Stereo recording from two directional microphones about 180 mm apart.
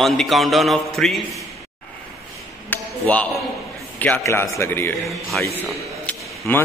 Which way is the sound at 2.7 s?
5° left (ahead or behind).